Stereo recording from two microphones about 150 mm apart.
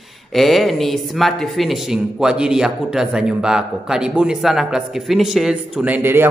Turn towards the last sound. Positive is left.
turn(degrees=-10)  # may be behind; listen again after turning